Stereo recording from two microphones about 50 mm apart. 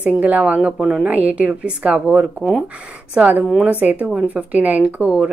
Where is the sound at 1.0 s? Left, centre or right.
Right.